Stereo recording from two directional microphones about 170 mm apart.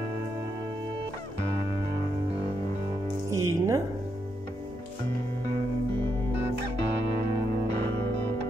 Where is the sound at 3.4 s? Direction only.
15° right (ahead or behind).